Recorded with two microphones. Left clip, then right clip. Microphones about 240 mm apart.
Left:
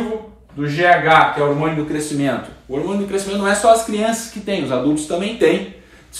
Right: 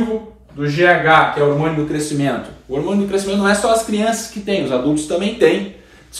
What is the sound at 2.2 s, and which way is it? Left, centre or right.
Speech, centre.